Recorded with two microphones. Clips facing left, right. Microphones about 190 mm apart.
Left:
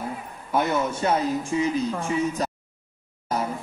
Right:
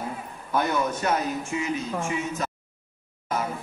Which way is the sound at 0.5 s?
25° left (ahead or behind).